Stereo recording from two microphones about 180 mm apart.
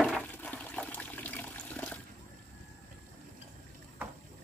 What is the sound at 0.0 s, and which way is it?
Toilet flush, 5° left (ahead or behind).